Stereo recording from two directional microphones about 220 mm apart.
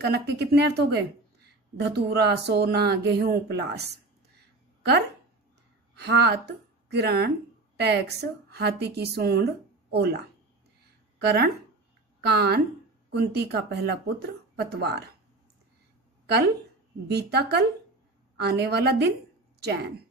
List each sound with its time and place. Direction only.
0.0 s speech: 50° right (ahead or behind)
5.9 s a woman's voice: 50° right (ahead or behind)
11.1 s speech: 50° right (ahead or behind)
17.1 s speech: 50° right (ahead or behind)